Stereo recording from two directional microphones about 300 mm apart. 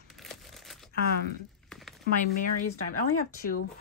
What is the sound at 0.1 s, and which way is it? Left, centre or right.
Crumpling, centre.